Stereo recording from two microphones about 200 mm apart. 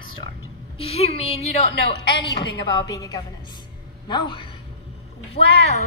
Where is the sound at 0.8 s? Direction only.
30° left (ahead or behind).